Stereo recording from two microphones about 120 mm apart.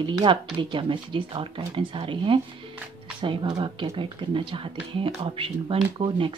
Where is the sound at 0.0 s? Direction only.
40° right (ahead or behind).